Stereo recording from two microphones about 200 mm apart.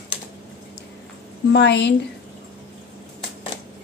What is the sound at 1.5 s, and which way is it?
Speech, 60° left (ahead or behind).